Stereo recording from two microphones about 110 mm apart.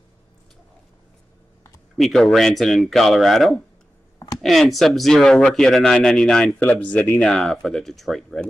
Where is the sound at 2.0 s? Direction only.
Centre (ahead or behind).